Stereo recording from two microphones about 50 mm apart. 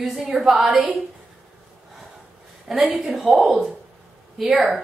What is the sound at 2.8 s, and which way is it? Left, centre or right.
Speech, right.